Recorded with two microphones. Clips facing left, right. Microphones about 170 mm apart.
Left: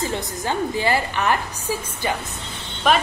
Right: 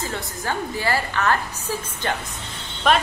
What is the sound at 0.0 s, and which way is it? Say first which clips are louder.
A woman's voice: left 3 dB; 20° left (ahead or behind).